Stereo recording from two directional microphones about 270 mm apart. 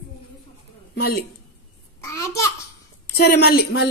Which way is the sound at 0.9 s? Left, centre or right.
Left.